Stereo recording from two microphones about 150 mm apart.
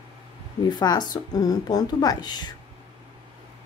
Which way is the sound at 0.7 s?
30° left (ahead or behind).